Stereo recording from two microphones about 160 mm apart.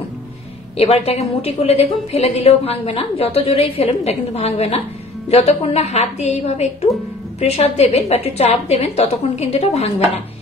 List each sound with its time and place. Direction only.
0.7 s a woman's voice: 40° left (ahead or behind)